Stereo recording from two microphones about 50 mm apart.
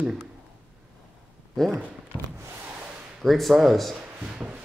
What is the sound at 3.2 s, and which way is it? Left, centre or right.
Speech, centre.